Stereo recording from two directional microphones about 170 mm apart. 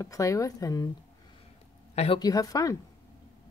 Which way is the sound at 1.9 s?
40° left (ahead or behind).